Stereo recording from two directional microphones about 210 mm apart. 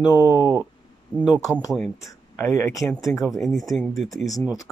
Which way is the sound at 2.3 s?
10° left (ahead or behind).